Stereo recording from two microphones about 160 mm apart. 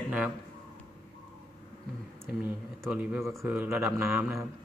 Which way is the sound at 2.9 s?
10° right (ahead or behind).